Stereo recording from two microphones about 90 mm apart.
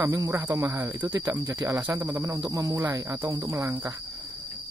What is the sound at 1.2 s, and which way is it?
Speech, 40° right (ahead or behind).